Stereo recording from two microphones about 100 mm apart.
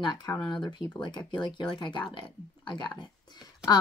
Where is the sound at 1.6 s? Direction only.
50° left (ahead or behind).